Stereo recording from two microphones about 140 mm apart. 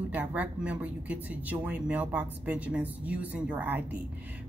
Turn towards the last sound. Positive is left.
turn(degrees=-10)  # may be behind; listen again after turning